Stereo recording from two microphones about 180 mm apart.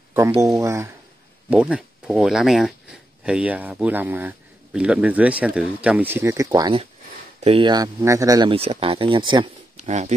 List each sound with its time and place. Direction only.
0.6 s speech: 15° right (ahead or behind)
9.8 s speech: 40° right (ahead or behind)